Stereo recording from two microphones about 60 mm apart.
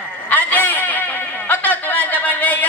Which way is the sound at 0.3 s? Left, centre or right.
Left.